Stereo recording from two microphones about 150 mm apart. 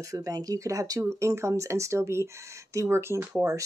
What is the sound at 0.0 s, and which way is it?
Speech, 20° right (ahead or behind).